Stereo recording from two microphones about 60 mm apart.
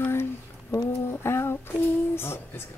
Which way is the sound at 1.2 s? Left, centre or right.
Left.